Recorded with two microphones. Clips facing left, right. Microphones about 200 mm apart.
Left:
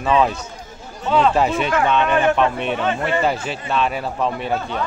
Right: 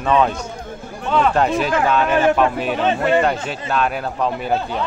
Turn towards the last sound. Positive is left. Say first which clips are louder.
# right 2 dB
turn(degrees=0)  # may be behind; listen again after turning